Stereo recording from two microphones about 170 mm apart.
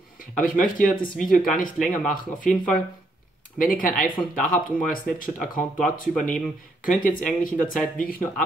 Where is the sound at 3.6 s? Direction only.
55° left (ahead or behind).